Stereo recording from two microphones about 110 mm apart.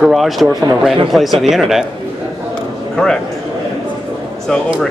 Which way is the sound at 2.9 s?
5° left (ahead or behind).